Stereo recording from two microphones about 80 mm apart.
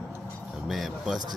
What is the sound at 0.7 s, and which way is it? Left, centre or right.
Speech, centre.